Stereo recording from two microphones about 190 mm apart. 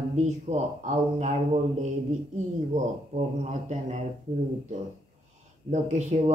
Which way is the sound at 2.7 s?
40° right (ahead or behind).